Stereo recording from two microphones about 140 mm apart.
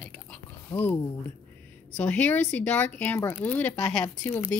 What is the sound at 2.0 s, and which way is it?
Speech, 10° left (ahead or behind).